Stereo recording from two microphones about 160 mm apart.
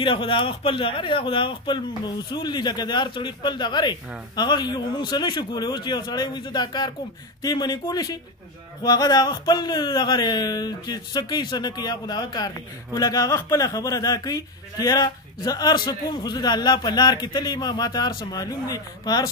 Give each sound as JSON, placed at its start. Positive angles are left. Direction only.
{"t": 0.0, "sound": "speech", "side_deg": 30}